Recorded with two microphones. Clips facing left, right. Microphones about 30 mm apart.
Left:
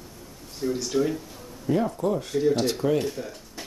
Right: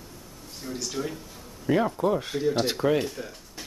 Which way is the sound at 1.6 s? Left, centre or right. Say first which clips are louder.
Right 1 dB; right.